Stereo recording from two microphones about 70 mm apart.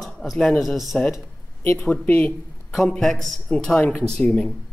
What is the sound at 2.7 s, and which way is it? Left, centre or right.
A man's voice, centre.